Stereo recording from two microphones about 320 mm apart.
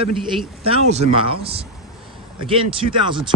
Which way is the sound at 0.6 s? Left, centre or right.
Centre.